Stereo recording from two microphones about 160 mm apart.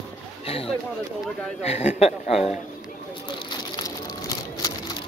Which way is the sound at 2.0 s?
40° left (ahead or behind).